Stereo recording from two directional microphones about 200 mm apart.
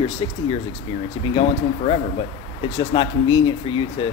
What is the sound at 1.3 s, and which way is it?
Speech, 30° left (ahead or behind).